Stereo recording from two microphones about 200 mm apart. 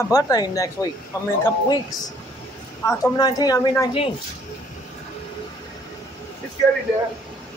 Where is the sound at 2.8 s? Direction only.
20° left (ahead or behind).